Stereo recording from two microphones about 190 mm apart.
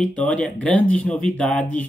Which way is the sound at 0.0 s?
5° left (ahead or behind).